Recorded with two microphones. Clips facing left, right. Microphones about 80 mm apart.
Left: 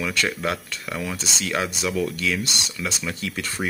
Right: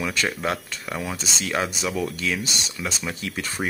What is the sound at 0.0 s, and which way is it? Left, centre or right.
Speech, centre.